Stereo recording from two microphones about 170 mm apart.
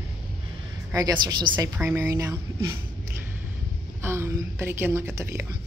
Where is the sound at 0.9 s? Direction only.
25° right (ahead or behind).